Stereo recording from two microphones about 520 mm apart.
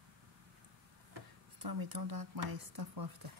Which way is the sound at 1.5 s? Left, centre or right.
Right.